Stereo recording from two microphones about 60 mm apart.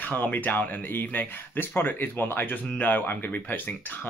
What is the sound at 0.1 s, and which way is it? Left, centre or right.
Speech, left.